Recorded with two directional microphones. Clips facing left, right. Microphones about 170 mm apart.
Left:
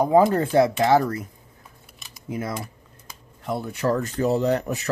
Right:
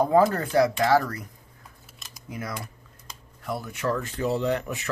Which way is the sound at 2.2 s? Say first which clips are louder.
Left 5 dB; 25° left (ahead or behind).